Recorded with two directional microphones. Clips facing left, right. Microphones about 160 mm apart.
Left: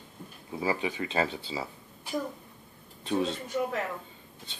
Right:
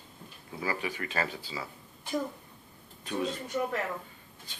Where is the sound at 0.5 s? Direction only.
25° left (ahead or behind).